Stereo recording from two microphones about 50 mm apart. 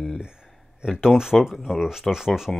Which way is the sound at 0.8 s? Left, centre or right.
Centre.